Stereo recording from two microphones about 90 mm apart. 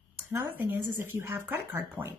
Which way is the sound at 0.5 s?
20° right (ahead or behind).